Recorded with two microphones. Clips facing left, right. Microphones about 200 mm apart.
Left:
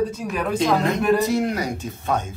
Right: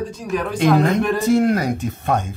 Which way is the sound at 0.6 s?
55° right (ahead or behind).